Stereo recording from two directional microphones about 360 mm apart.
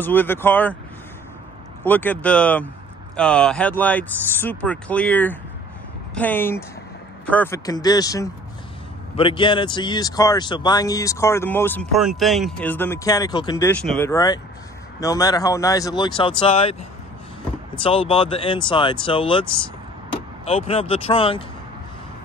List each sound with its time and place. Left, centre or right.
0.0 s speech: centre
1.9 s speech: centre
17.8 s speech: centre